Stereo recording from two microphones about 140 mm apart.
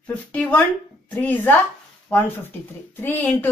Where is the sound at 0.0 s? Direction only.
10° left (ahead or behind).